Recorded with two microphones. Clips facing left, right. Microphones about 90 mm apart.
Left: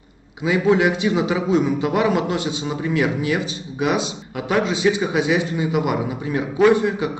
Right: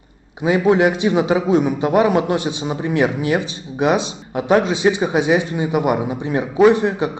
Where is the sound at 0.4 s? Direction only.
30° right (ahead or behind).